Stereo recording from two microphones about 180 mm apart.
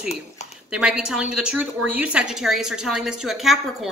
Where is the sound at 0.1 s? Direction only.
40° left (ahead or behind).